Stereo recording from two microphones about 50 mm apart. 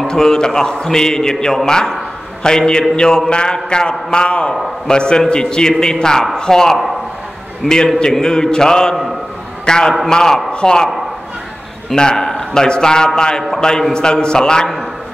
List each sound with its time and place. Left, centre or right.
0.1 s a man's voice: centre
11.9 s a man's voice: centre